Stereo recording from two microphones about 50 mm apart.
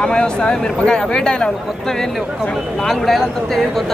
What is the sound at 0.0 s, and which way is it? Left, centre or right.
Speech, centre.